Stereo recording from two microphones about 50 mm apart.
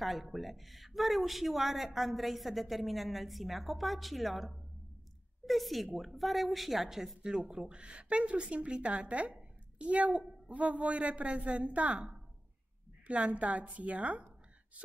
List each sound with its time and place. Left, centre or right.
0.0 s speech: centre
7.2 s a woman's voice: centre